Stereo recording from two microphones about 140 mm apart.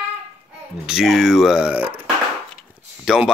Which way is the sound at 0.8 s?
5° right (ahead or behind).